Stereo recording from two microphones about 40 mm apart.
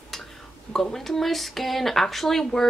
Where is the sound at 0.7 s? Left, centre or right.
Centre.